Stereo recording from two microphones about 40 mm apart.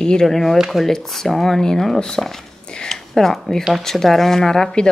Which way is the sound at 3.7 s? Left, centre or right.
Centre.